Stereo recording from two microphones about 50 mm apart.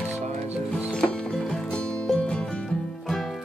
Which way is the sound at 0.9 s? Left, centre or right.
Centre.